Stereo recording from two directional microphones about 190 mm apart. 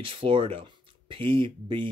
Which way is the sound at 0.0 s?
25° right (ahead or behind).